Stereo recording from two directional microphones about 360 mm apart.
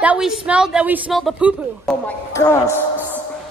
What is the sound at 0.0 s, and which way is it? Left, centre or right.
A woman's voice, centre.